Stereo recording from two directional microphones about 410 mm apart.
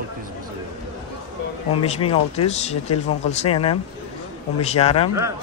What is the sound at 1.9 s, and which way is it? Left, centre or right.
Speech, centre.